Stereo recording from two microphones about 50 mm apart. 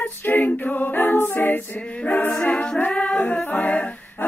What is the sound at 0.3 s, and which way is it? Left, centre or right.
A capella, left.